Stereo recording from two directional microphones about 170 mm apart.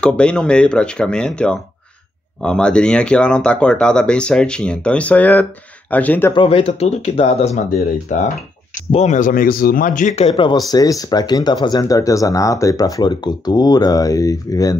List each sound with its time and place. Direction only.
0.0 s speech: 5° left (ahead or behind)
6.3 s speech: 30° left (ahead or behind)
8.1 s speech: 45° left (ahead or behind)
10.3 s speech: 25° left (ahead or behind)